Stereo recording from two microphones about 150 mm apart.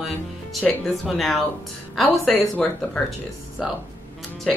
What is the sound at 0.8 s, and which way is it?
Speech, centre (ahead or behind).